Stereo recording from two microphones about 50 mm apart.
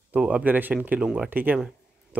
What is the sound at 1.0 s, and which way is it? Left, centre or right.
Speech, centre.